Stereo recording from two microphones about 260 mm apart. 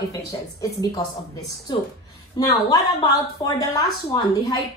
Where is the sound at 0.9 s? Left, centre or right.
Centre.